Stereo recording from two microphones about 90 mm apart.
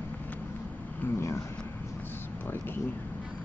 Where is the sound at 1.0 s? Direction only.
30° left (ahead or behind).